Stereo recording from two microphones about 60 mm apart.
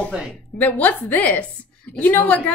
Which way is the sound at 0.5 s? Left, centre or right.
Left.